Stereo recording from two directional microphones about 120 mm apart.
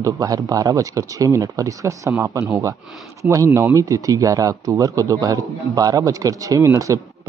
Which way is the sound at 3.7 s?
25° right (ahead or behind).